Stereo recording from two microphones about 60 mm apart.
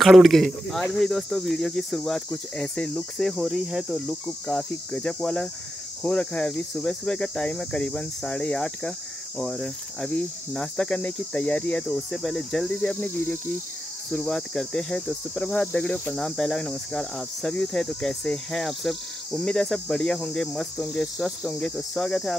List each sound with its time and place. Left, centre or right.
0.0 s speech: centre
0.9 s cricket: centre
3.2 s speech: centre
3.4 s cricket: centre
4.5 s cricket: centre
11.8 s cricket: centre
14.1 s cricket: centre